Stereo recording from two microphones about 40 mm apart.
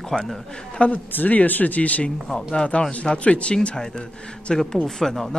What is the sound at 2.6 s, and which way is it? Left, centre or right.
Speech, left.